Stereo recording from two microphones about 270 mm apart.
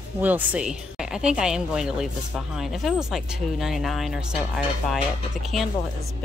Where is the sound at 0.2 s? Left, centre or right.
Centre.